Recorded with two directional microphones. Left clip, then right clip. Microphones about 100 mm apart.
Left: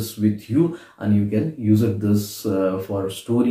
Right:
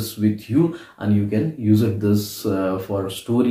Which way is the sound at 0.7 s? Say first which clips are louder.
Even; 15° right (ahead or behind).